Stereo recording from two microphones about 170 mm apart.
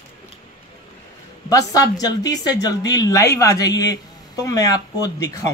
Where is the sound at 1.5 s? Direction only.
20° left (ahead or behind).